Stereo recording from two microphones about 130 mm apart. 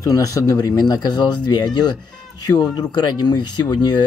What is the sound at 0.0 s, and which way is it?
Speech, 25° left (ahead or behind).